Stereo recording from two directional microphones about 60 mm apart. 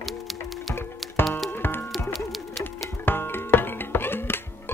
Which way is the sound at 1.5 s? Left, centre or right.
Left.